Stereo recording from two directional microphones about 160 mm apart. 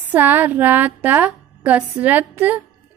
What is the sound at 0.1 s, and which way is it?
A woman's voice, 10° right (ahead or behind).